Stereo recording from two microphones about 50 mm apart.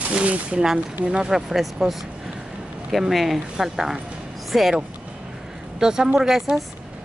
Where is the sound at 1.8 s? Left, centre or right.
Centre.